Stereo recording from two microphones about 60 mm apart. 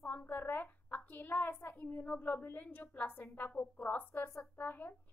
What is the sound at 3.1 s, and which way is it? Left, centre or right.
A woman's voice, left.